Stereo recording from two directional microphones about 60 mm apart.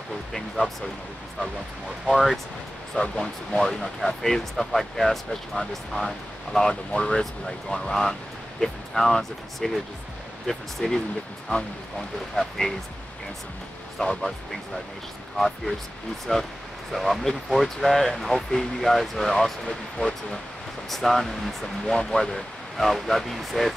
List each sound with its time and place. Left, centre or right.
2.0 s speech: centre
12.4 s speech: centre
13.9 s speech: centre